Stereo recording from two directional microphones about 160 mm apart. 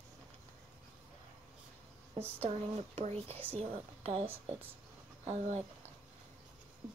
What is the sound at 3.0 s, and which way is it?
A woman's voice, 40° right (ahead or behind).